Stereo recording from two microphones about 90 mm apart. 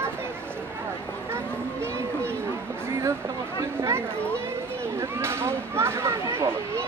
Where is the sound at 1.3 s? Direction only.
30° right (ahead or behind).